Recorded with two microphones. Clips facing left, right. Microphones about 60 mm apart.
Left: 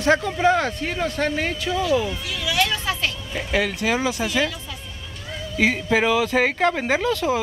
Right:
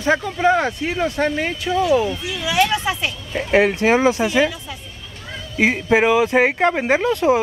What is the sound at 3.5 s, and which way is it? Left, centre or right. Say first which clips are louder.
Speech: right 7 dB; right.